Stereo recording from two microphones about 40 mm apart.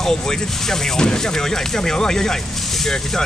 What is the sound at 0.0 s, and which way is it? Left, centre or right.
Speech, centre.